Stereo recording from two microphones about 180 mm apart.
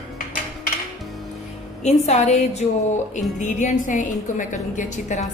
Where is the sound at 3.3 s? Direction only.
40° left (ahead or behind).